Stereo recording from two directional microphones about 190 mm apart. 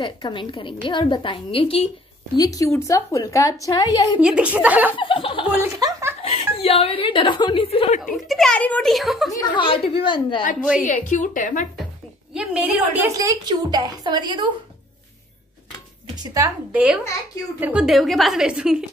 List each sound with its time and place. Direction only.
0.0 s a woman's voice: 25° left (ahead or behind)
2.3 s a woman's voice: 20° left (ahead or behind)
4.2 s a woman's voice: 5° right (ahead or behind)
4.9 s a woman's voice: 25° left (ahead or behind)
5.6 s speech: 15° right (ahead or behind)
6.2 s a woman's voice: 30° left (ahead or behind)
8.0 s a woman's voice: centre (ahead or behind)
9.3 s a woman's voice: 20° left (ahead or behind)
10.8 s a woman's voice: 40° left (ahead or behind)
12.4 s a woman's voice: 5° right (ahead or behind); by 14.4 s 25° right (ahead or behind)
16.2 s a woman's voice: 20° right (ahead or behind)
16.7 s a woman's voice: 5° right (ahead or behind)